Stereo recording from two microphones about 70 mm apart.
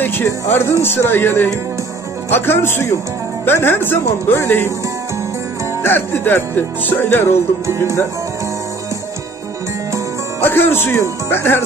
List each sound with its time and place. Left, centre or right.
0.0 s speech: left
5.8 s music: left
7.6 s music: right
10.4 s speech: left